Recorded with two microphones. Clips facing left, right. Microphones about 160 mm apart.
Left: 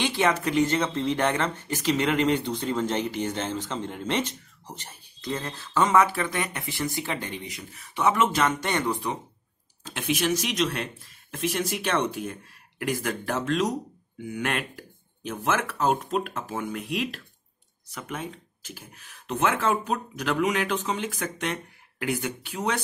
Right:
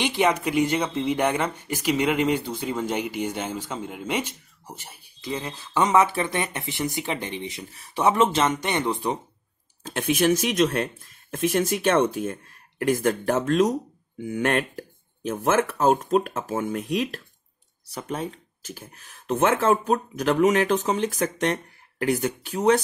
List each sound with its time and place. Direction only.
0.0 s speech: 15° right (ahead or behind)
9.8 s speech: 50° right (ahead or behind)